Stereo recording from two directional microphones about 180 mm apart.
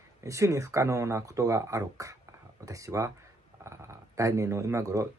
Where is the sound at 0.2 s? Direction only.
15° right (ahead or behind).